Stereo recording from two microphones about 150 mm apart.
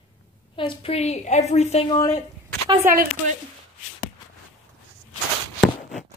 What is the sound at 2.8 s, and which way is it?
Speech, 70° right (ahead or behind).